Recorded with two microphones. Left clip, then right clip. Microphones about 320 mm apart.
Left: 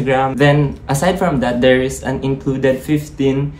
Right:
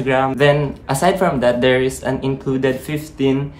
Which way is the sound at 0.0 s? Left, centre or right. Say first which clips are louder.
Left 1 dB; centre.